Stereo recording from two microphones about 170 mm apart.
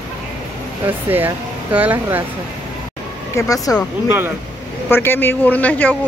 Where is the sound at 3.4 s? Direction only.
20° left (ahead or behind).